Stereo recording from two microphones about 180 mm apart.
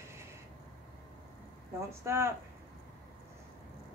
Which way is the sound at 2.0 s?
15° right (ahead or behind).